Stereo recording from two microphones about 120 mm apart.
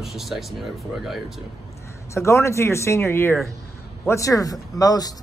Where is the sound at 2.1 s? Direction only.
25° left (ahead or behind).